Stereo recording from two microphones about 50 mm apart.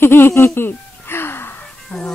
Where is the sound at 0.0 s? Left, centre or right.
Left.